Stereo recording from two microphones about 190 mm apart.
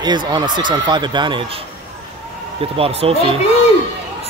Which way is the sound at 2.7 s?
30° right (ahead or behind).